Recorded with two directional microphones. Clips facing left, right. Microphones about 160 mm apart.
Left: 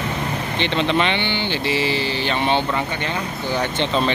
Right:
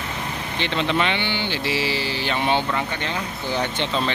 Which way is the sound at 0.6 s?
5° right (ahead or behind).